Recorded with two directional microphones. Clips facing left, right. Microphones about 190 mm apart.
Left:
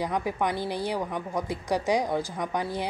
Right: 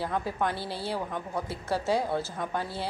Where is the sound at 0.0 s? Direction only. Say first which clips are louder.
Left 2 dB; 15° left (ahead or behind).